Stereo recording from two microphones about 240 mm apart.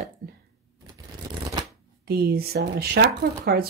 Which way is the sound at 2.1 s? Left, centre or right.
Right.